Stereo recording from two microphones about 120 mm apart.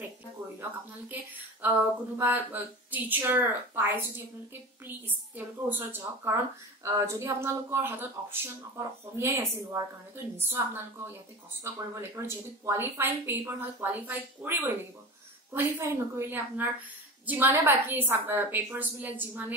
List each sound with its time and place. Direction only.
0.6 s a woman's voice: 15° right (ahead or behind)